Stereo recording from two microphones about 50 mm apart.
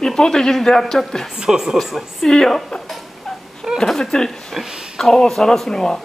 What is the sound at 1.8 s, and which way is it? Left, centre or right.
Speech, centre.